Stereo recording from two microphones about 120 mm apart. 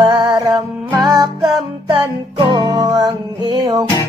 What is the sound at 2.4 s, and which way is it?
Music, 35° right (ahead or behind).